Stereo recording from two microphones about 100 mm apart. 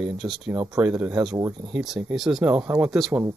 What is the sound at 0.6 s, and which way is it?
Speech, 10° right (ahead or behind).